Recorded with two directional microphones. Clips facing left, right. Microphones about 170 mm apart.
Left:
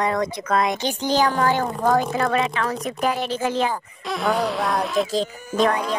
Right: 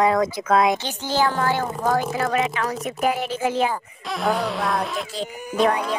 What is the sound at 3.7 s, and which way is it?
Speech, centre (ahead or behind).